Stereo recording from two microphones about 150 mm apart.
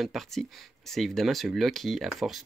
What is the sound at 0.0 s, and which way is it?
Speech, centre (ahead or behind).